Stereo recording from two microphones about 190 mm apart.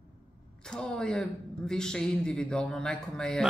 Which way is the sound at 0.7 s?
5° left (ahead or behind).